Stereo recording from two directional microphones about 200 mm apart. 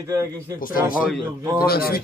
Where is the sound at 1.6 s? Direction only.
50° left (ahead or behind).